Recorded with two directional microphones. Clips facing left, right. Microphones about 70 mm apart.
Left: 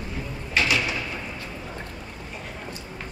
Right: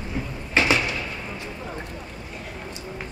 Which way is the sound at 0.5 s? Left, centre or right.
Right.